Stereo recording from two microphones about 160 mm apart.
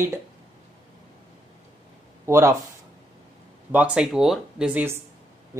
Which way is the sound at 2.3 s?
20° right (ahead or behind).